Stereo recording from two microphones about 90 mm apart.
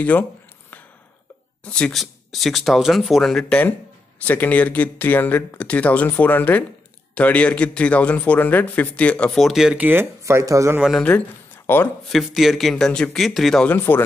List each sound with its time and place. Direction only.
0.0 s a sound: 20° left (ahead or behind)
1.6 s speech: 10° left (ahead or behind)
4.2 s speech: 20° left (ahead or behind)
9.4 s speech: 5° right (ahead or behind)
9.8 s speech: 20° right (ahead or behind)
10.2 s speech: 35° right (ahead or behind)
11.0 s speech: 15° left (ahead or behind)
12.1 s speech: centre (ahead or behind)
13.7 s speech: 25° left (ahead or behind)